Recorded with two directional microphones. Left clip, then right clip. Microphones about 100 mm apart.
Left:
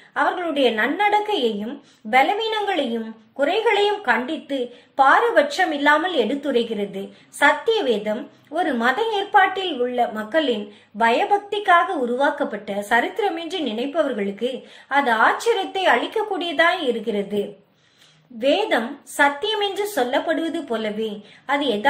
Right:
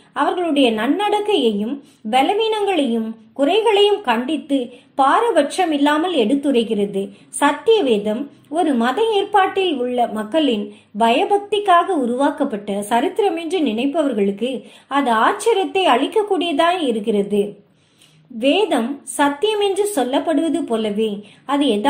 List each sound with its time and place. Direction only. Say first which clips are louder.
0.1 s a woman's voice: right 3 dB; 30° right (ahead or behind)
18.4 s a woman's voice: right 2 dB; 25° right (ahead or behind)